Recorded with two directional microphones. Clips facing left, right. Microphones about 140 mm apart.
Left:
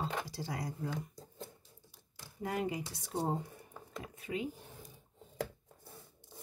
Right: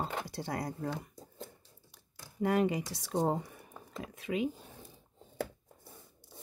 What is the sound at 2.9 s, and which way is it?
Speech, 85° right.